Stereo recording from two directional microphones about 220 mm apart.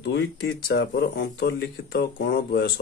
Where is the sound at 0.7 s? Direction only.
50° left (ahead or behind).